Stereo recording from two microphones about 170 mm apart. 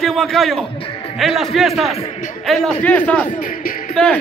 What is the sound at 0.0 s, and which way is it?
A man's voice, centre (ahead or behind).